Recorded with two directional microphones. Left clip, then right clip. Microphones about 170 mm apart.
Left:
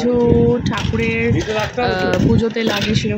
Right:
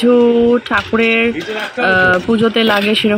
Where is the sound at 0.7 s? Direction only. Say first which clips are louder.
Right 7 dB; 15° right (ahead or behind).